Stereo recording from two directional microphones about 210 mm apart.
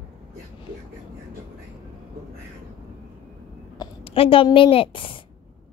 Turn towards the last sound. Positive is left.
turn(degrees=25)  # may be behind; listen again after turning